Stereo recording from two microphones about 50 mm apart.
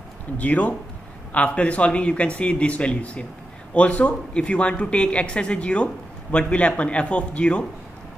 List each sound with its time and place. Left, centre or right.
0.4 s speech: left